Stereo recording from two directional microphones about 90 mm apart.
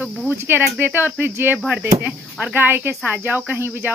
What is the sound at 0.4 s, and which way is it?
Speech, 25° right (ahead or behind).